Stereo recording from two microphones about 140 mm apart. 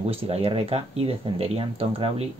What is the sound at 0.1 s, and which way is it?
Speech, 45° right (ahead or behind).